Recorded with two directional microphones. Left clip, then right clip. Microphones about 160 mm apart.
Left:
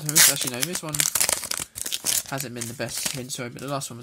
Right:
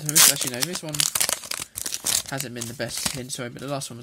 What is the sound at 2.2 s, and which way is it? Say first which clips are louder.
Speech: even; 15° right (ahead or behind).